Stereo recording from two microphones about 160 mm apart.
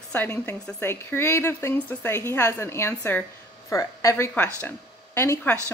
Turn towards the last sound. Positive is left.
turn(degrees=15)  # may be behind; listen again after turning